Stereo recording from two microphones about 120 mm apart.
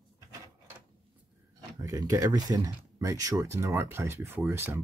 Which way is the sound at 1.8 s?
30° right (ahead or behind).